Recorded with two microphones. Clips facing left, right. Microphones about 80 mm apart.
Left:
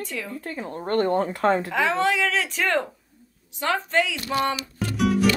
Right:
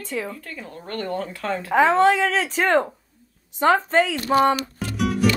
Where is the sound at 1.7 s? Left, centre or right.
Right.